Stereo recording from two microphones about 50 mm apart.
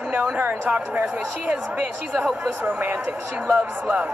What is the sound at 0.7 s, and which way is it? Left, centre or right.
Speech, right.